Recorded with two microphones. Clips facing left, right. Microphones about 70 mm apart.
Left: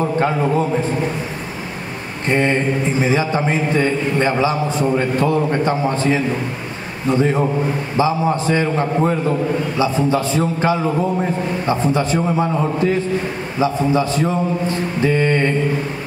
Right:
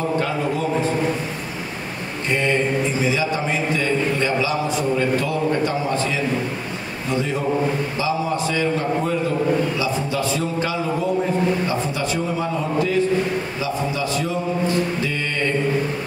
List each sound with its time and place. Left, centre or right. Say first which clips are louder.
2.2 s a man's voice: left 4 dB; left